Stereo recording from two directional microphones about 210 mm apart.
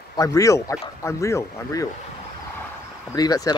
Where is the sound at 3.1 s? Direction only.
20° left (ahead or behind).